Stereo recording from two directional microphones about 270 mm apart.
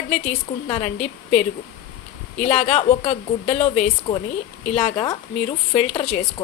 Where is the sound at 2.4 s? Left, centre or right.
Left.